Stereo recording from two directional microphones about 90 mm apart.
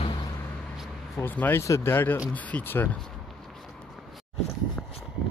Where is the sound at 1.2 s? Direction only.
20° left (ahead or behind).